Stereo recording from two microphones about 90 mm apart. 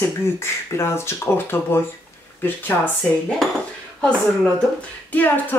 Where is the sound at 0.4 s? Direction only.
30° left (ahead or behind).